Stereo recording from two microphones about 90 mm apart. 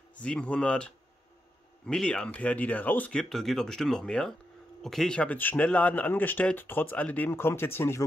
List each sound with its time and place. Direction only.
0.1 s speech: 10° left (ahead or behind)